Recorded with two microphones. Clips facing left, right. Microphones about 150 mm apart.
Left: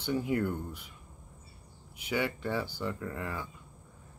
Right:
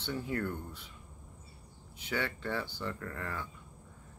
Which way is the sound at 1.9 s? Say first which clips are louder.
Left 4 dB; 10° left (ahead or behind).